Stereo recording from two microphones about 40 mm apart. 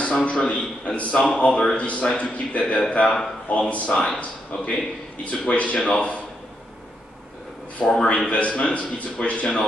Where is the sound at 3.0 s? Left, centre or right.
Centre.